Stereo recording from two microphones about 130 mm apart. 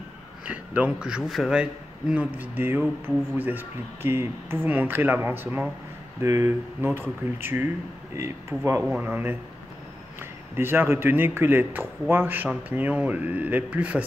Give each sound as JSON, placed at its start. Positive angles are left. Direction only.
{"t": 0.5, "sound": "a man's voice", "side_deg": -10}
{"t": 10.5, "sound": "a man's voice", "side_deg": -15}